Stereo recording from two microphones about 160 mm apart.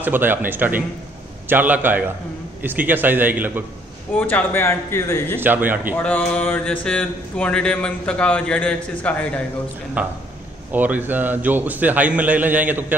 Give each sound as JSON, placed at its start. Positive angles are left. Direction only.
{"t": 0.0, "sound": "a man's voice", "side_deg": -10}
{"t": 4.2, "sound": "mantra", "side_deg": 10}
{"t": 5.4, "sound": "a man's voice", "side_deg": -10}
{"t": 5.9, "sound": "mantra", "side_deg": 10}
{"t": 10.7, "sound": "a man's voice", "side_deg": -10}